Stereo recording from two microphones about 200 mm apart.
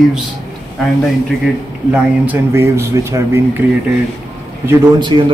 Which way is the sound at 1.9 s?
10° right (ahead or behind).